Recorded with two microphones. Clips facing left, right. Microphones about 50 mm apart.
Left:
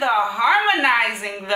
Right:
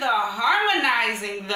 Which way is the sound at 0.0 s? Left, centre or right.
Centre.